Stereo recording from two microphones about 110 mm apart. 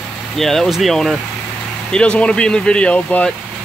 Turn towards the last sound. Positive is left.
turn(degrees=10)  # may be behind; listen again after turning